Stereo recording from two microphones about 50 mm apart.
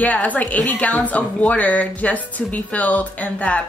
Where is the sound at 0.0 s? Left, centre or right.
Left.